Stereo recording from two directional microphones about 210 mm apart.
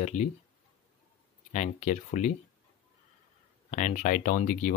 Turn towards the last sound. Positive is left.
turn(degrees=40)  # may be behind; listen again after turning